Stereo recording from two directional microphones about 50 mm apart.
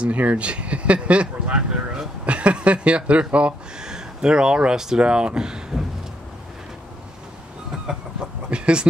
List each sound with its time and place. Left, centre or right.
0.0 s speech: right
3.8 s speech: centre
8.5 s a sound: right